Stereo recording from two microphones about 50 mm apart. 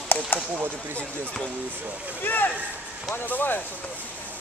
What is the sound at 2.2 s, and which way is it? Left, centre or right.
Speech, left.